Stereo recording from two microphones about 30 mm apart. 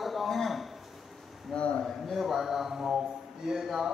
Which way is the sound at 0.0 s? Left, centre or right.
Centre.